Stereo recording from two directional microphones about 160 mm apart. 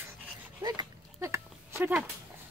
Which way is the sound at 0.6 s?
25° right (ahead or behind).